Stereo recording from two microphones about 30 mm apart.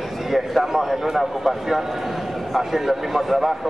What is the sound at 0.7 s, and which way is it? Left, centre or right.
Speech, centre.